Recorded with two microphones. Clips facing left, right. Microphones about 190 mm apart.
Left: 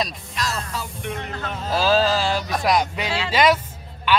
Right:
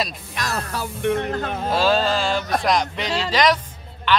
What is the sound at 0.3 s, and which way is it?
Speech, 60° right (ahead or behind).